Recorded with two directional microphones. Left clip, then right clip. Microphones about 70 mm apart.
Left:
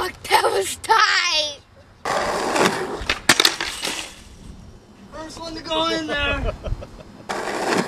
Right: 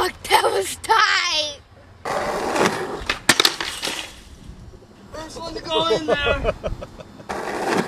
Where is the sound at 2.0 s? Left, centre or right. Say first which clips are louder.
Left 1 dB; centre.